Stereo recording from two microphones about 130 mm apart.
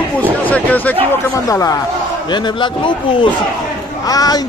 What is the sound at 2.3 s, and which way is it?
Speech, 35° left (ahead or behind).